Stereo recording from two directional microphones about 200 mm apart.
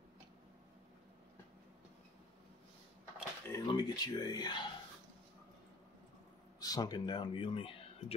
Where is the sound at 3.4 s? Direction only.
20° left (ahead or behind).